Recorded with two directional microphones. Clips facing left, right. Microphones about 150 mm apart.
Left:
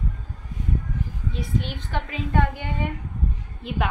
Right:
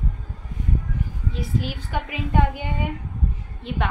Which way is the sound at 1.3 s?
5° right (ahead or behind).